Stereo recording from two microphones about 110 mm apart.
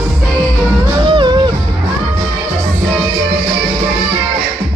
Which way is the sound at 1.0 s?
50° right (ahead or behind).